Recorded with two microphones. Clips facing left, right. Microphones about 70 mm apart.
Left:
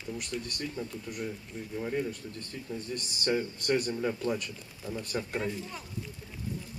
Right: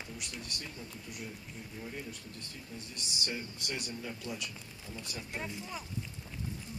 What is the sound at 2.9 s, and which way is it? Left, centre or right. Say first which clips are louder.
Speech: left 10 dB; left.